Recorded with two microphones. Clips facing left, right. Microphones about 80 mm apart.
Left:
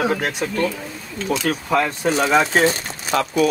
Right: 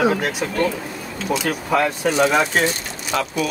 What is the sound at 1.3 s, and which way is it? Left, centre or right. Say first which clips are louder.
Speech: even; centre.